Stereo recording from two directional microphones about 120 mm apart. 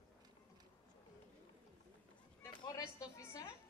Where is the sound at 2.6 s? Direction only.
30° left (ahead or behind).